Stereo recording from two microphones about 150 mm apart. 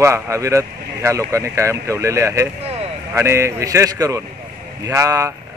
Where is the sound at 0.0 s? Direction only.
20° right (ahead or behind).